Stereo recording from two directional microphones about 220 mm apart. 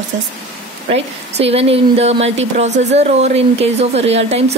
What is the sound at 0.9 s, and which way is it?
Speech, 25° right (ahead or behind).